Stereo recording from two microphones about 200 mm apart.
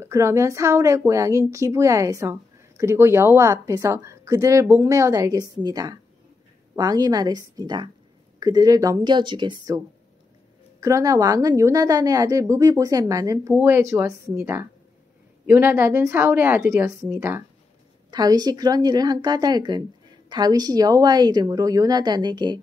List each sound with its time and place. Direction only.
0.0 s a woman's voice: 15° right (ahead or behind)